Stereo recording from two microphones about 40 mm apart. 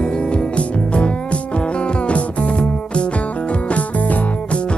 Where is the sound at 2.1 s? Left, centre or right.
Left.